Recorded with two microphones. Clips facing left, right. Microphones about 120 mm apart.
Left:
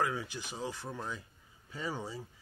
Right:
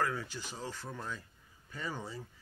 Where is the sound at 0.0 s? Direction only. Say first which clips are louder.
Left 1 dB; 15° left (ahead or behind).